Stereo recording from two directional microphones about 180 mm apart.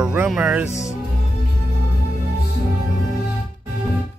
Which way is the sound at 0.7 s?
40° left (ahead or behind).